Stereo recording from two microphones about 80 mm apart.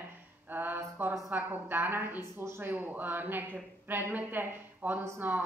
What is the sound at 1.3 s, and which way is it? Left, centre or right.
Speech, right.